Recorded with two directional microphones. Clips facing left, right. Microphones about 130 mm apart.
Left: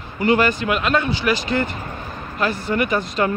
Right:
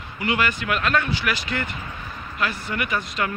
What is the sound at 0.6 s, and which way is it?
Speech, 20° left (ahead or behind).